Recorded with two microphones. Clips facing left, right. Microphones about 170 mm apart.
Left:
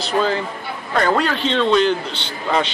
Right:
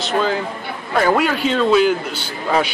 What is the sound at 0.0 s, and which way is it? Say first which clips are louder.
A man's voice: even; centre (ahead or behind).